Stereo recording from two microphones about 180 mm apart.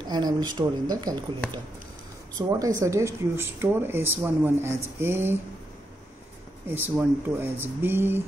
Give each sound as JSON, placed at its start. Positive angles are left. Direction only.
{"t": 0.0, "sound": "speech", "side_deg": -25}
{"t": 2.3, "sound": "speech", "side_deg": -20}
{"t": 6.7, "sound": "speech", "side_deg": -10}